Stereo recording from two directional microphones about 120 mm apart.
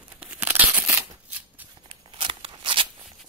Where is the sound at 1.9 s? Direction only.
50° right (ahead or behind).